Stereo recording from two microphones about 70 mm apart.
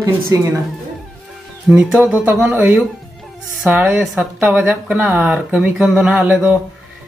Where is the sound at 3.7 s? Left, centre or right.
Right.